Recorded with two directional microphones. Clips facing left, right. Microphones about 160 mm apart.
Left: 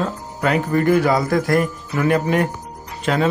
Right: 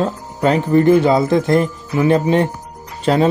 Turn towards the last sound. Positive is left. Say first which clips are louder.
# right 4 dB
turn(degrees=-35)  # may be behind; listen again after turning